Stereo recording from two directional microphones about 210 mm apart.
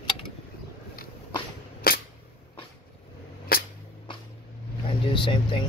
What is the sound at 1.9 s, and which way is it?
Single-lens reflex camera, 45° left (ahead or behind).